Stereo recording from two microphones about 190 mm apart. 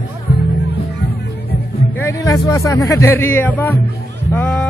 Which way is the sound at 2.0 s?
15° left (ahead or behind).